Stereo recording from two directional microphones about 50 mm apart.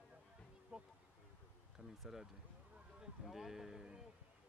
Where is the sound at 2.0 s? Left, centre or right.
Centre.